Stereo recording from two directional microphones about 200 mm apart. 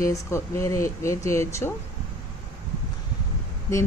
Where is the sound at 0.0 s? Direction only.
15° left (ahead or behind).